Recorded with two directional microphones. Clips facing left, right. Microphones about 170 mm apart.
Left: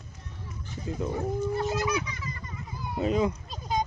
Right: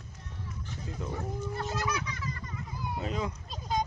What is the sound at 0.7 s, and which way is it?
Speech, 10° left (ahead or behind).